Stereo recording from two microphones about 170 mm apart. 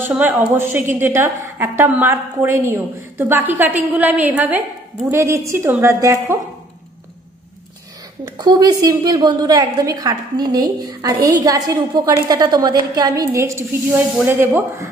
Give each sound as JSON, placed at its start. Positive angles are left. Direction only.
{"t": 0.1, "sound": "a woman's voice", "side_deg": -10}
{"t": 8.3, "sound": "a woman's voice", "side_deg": -25}